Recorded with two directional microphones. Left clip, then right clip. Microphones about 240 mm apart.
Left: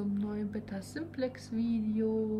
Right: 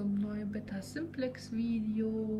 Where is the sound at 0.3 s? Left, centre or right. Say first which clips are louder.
Left 2 dB; centre.